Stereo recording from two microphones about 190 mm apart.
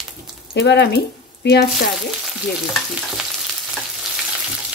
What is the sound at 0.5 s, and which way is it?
Speech, 65° left (ahead or behind).